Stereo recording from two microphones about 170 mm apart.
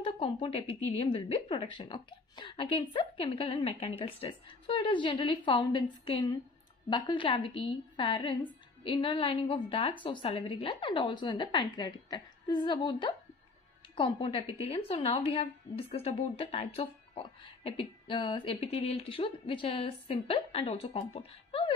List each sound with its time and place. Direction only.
0.0 s a woman's voice: 35° left (ahead or behind)